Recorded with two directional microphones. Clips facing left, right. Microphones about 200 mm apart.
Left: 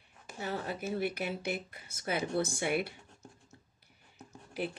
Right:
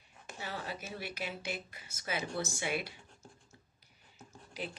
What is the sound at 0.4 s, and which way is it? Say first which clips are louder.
Speech: left 5 dB; 50° left (ahead or behind).